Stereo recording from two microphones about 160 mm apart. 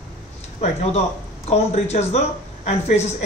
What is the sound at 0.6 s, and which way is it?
A woman's voice, 40° left (ahead or behind).